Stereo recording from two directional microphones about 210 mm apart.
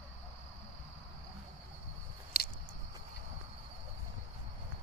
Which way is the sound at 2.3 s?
50° left (ahead or behind).